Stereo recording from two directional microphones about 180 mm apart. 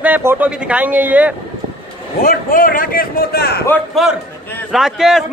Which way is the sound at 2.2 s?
50° left (ahead or behind).